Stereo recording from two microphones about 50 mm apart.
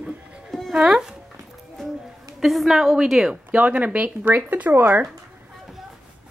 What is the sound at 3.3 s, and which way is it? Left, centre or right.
Speech, right.